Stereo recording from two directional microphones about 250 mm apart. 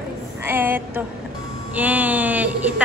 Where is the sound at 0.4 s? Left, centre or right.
Centre.